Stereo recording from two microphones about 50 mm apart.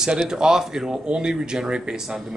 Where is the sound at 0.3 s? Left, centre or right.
Centre.